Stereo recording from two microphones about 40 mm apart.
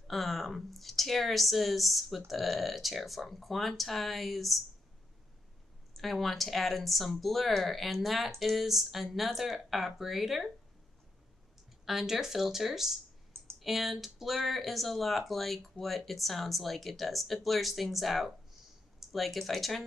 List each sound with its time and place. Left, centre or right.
0.1 s speech: centre
5.9 s speech: centre
11.8 s speech: centre